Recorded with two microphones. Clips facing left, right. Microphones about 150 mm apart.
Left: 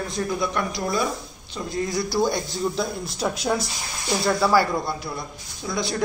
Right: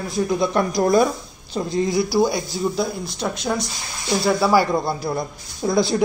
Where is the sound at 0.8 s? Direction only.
50° right (ahead or behind).